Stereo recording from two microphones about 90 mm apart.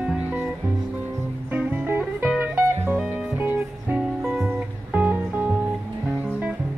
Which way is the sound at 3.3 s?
20° right (ahead or behind).